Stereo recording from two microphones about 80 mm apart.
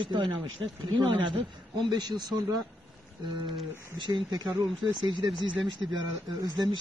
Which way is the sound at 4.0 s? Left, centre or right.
Right.